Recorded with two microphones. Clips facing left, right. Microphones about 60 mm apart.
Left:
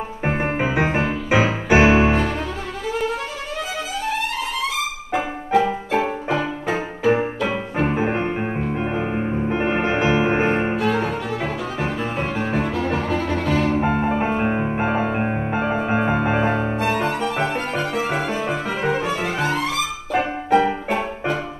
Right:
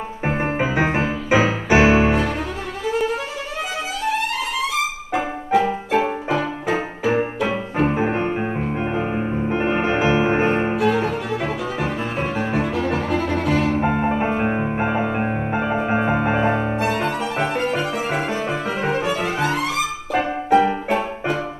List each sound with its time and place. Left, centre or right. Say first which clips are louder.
0.2 s music: even; centre
5.1 s music: even; centre
7.2 s music: right 1 dB; centre
7.7 s music: right 1 dB; centre
10.8 s music: right 2 dB; centre
11.4 s music: right 1 dB; centre
13.7 s music: even; centre
17.2 s violin: even; centre
17.7 s music: even; centre
20.1 s music: right 1 dB; centre